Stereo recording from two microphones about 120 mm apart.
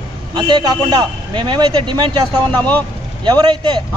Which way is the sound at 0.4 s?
40° right (ahead or behind).